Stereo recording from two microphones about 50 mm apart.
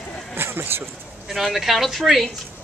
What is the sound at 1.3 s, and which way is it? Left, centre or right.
A woman's voice, centre.